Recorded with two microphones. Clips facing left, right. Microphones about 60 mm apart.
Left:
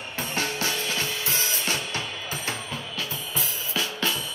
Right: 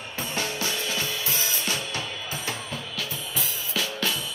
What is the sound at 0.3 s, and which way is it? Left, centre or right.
Music, left.